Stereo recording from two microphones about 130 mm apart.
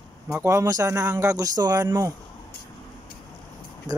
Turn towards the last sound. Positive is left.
turn(degrees=-30)  # may be behind; listen again after turning